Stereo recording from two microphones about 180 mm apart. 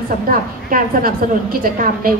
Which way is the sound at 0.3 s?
50° right (ahead or behind).